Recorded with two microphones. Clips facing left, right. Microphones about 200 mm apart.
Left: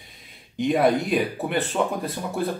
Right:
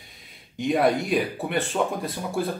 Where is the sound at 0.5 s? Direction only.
Centre (ahead or behind).